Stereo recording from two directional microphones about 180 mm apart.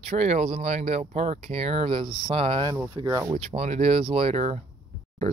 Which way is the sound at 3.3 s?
35° right (ahead or behind).